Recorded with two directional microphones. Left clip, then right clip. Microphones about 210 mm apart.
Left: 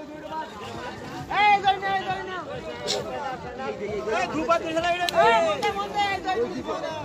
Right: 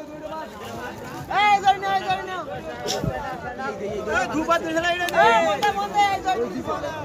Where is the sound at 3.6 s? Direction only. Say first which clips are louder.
Right 1 dB; 50° right (ahead or behind).